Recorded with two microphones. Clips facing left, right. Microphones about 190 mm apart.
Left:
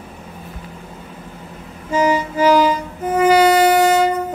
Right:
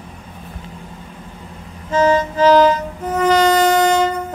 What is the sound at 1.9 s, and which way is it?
Music, 10° left (ahead or behind).